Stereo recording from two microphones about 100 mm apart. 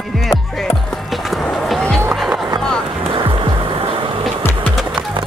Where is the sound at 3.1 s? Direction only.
55° right (ahead or behind).